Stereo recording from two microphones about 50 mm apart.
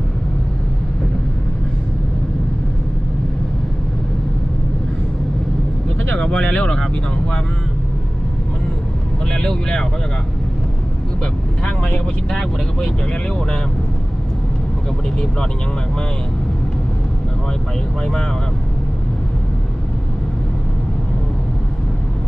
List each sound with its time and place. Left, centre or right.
6.0 s speech: left
9.3 s speech: centre
11.6 s speech: centre